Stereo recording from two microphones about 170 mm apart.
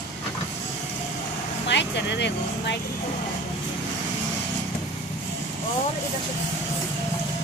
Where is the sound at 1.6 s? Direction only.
90° left.